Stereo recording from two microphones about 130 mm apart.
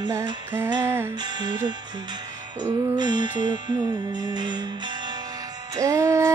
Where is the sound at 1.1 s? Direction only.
35° right (ahead or behind).